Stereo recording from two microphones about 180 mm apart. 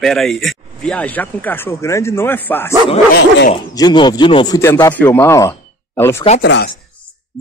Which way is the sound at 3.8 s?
25° left (ahead or behind).